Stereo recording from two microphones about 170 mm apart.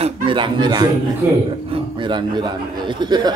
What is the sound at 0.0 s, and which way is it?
Speech, 30° right (ahead or behind).